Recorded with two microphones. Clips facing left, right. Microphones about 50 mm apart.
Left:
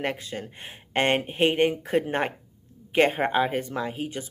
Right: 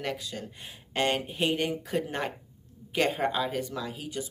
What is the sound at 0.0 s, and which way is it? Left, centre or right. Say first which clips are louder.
Speech: left 4 dB; left.